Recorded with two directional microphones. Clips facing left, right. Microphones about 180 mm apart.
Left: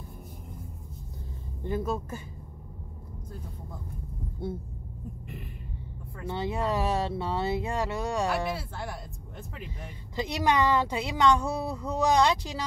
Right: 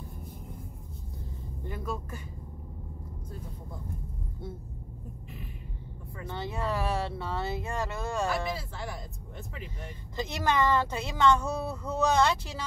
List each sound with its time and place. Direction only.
1.7 s vehicle: 25° left (ahead or behind)
6.2 s speech: 15° left (ahead or behind)
10.1 s speech: 15° left (ahead or behind)